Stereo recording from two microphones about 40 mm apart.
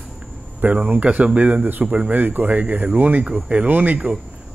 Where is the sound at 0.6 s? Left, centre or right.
Right.